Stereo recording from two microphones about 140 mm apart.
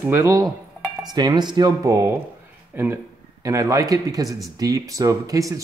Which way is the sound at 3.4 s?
25° right (ahead or behind).